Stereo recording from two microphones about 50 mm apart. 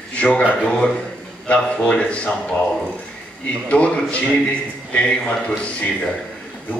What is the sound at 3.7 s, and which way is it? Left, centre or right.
A man's voice, left.